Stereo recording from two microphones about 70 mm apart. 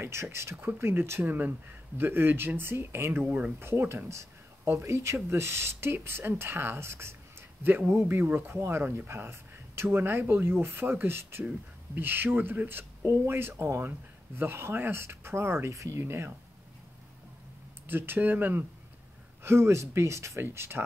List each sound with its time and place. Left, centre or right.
0.0 s speech: right
0.6 s speech: right
1.2 s speech: right
3.5 s speech: right
17.8 s speech: right
19.4 s speech: right